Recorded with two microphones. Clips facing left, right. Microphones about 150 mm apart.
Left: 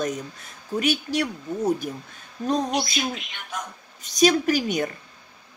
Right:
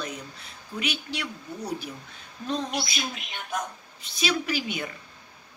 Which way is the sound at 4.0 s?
45° left (ahead or behind).